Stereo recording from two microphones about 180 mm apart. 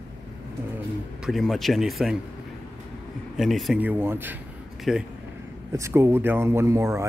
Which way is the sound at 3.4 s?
Centre (ahead or behind).